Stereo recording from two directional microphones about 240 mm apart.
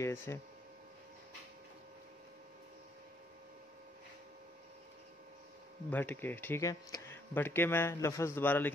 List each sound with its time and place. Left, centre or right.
0.0 s speech: centre
5.9 s speech: centre